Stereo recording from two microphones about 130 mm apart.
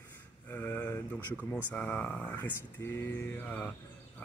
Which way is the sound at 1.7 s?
10° left (ahead or behind).